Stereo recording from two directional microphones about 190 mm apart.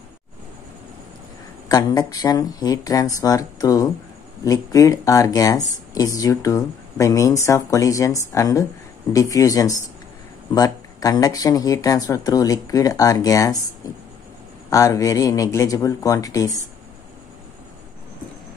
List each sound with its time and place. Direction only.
1.7 s speech: 20° left (ahead or behind)
13.8 s a sound: 20° left (ahead or behind)
14.7 s speech: 15° left (ahead or behind)